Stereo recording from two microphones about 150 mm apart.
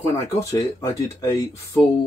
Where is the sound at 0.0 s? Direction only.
20° left (ahead or behind).